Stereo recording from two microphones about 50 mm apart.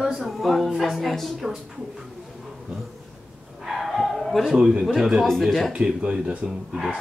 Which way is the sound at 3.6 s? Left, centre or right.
Centre.